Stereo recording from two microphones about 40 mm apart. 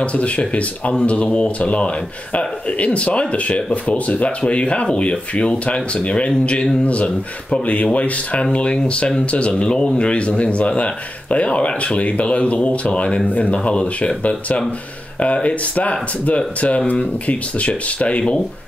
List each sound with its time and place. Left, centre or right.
0.0 s speech: left
7.6 s speech: left
15.3 s speech: left